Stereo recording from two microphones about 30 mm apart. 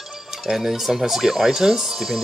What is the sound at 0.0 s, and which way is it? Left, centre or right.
Speech, centre.